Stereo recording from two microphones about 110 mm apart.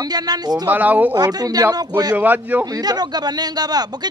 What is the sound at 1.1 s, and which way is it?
Speech, 35° right (ahead or behind).